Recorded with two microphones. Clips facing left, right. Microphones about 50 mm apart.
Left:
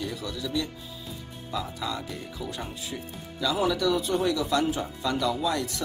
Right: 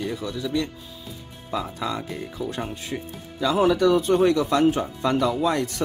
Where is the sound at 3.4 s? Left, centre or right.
Right.